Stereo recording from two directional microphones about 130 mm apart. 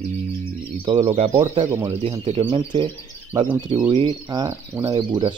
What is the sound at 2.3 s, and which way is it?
Speech, 45° right (ahead or behind).